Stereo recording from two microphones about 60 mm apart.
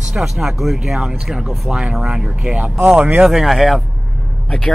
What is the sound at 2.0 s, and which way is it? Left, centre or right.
Speech, centre.